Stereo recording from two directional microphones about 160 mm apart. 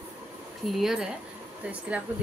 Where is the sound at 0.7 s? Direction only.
5° right (ahead or behind).